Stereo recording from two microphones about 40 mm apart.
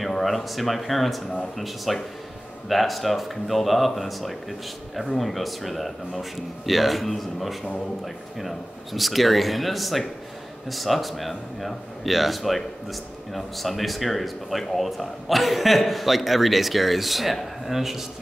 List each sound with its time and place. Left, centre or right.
0.0 s speech: centre